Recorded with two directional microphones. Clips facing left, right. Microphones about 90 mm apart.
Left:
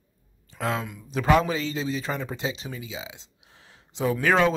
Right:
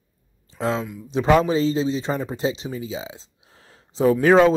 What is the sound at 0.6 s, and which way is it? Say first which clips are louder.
Speech: right 4 dB; 25° right (ahead or behind).